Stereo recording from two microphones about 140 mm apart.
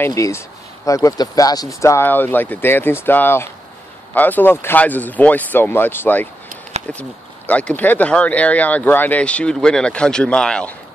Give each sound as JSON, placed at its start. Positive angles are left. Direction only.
{"t": 0.0, "sound": "speech", "side_deg": 20}